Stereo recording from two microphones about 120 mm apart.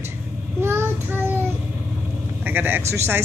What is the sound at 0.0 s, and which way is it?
Child singing, 20° right (ahead or behind).